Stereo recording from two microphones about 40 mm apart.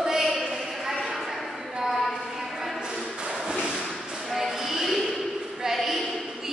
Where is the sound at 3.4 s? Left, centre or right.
Right.